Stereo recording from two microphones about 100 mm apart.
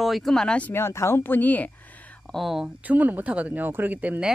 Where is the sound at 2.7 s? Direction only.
15° right (ahead or behind).